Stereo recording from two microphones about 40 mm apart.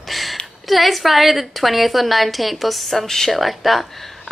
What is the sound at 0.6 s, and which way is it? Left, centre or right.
A woman's voice, centre.